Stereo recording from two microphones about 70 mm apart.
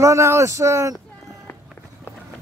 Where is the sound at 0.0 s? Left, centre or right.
Right.